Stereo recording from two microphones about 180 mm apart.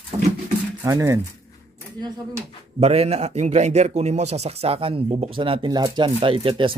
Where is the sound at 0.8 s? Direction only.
15° right (ahead or behind).